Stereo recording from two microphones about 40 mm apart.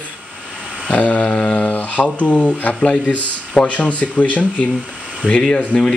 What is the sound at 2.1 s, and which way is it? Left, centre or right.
Speech, left.